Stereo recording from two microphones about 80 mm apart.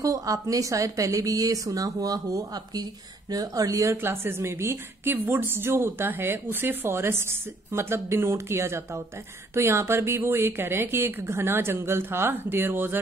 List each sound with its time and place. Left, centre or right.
0.0 s a woman's voice: right
3.9 s a woman's voice: right